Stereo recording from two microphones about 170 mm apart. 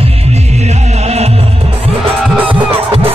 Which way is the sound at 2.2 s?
10° right (ahead or behind).